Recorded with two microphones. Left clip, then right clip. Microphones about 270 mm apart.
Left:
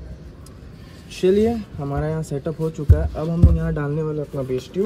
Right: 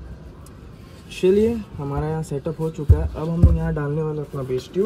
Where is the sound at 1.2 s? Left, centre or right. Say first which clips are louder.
Even; centre.